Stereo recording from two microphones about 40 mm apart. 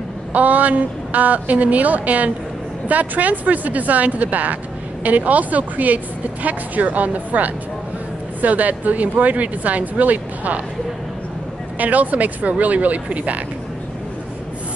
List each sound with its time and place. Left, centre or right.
0.3 s speech: right
11.8 s speech: right